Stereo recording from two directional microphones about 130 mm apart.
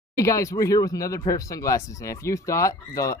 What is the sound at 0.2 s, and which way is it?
Speech, 25° left (ahead or behind).